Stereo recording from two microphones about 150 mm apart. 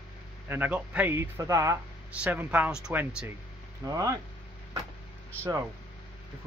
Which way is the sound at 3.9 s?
25° right (ahead or behind).